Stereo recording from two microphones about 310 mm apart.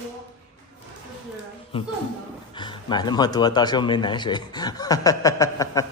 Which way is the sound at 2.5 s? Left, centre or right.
Centre.